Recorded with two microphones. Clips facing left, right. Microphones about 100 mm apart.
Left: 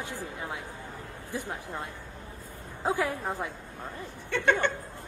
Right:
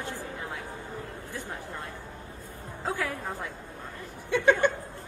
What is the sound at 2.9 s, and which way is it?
Speech, 20° left (ahead or behind).